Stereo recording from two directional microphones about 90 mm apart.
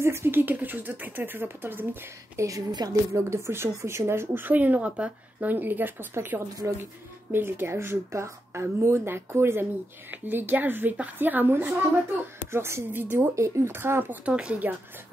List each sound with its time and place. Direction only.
0.0 s speech: 25° right (ahead or behind)
2.3 s a woman's voice: 35° right (ahead or behind)
2.7 s speech: 50° right (ahead or behind)
3.1 s speech: 30° right (ahead or behind)
14.2 s speech: 10° right (ahead or behind)